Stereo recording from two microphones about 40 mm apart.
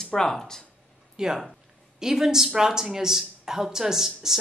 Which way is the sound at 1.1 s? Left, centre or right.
Centre.